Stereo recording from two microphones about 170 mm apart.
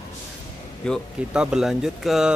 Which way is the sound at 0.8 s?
Centre (ahead or behind).